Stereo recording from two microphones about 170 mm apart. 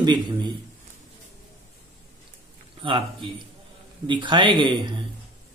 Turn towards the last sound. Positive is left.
turn(degrees=-30)  # may be behind; listen again after turning